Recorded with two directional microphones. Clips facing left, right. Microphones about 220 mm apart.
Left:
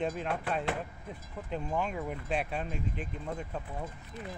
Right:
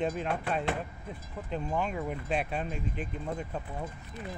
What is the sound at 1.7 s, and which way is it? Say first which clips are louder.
Speech: right 1 dB; centre (ahead or behind).